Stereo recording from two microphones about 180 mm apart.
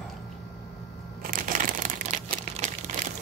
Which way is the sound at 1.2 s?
50° right (ahead or behind).